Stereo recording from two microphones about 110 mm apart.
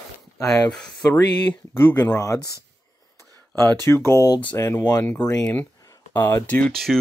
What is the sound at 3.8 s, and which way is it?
Speech, 25° left (ahead or behind).